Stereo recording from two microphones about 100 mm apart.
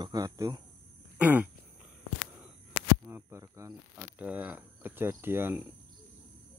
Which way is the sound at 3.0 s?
25° right (ahead or behind).